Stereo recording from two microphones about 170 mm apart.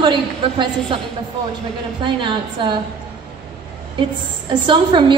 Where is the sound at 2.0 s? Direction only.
30° right (ahead or behind).